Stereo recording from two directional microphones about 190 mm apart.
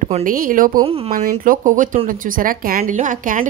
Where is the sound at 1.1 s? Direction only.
45° right (ahead or behind).